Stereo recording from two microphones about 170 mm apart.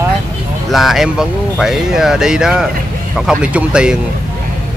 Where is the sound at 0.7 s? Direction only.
Centre (ahead or behind).